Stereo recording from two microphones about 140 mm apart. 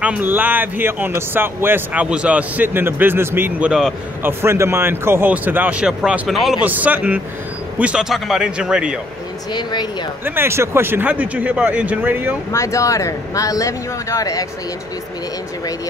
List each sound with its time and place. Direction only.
0.0 s speech: 10° right (ahead or behind)
4.2 s a man's voice: 15° right (ahead or behind)
9.5 s speech: 30° left (ahead or behind)
10.2 s speech: 15° right (ahead or behind)
12.5 s speech: 20° left (ahead or behind)